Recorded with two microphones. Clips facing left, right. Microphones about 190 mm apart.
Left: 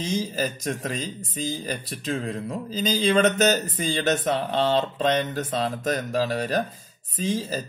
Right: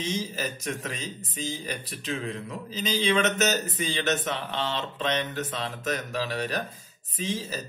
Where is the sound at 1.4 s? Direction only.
40° left (ahead or behind).